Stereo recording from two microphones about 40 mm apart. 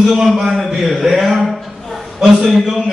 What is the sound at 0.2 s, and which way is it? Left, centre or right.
A man's voice, centre.